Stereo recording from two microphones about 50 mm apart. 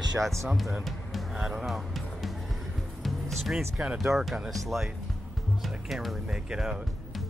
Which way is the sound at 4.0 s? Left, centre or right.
Centre.